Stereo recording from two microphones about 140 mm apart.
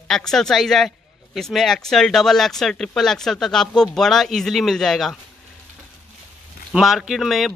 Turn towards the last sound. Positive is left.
turn(degrees=0)  # may be behind; listen again after turning